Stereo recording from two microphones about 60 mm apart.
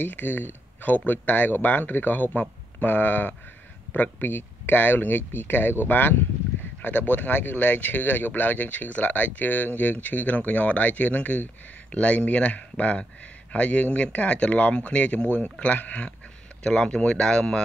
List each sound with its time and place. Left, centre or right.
0.0 s speech: left
16.6 s speech: centre